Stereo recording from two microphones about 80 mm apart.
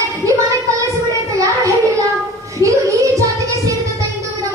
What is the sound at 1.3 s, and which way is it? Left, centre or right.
Child singing, right.